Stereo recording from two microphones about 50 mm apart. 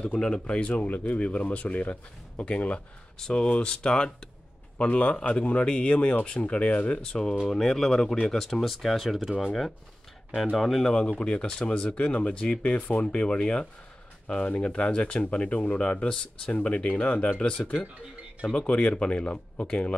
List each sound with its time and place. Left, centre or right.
0.0 s speech: centre
4.7 s speech: left; by 9.3 s centre
10.5 s speech: centre
10.9 s speech: left
18.7 s speech: left